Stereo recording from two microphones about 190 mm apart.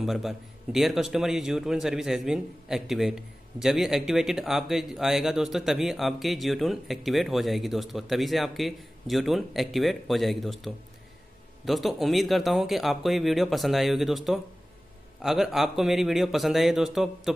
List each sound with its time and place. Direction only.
0.0 s a man's voice: centre (ahead or behind)